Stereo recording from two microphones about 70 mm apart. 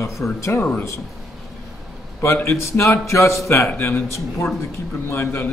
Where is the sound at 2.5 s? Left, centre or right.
Left.